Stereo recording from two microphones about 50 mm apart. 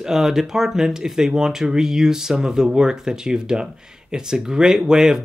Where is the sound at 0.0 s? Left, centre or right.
Centre.